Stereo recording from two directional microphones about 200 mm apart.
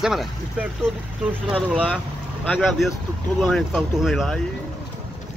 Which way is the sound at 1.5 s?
Centre (ahead or behind).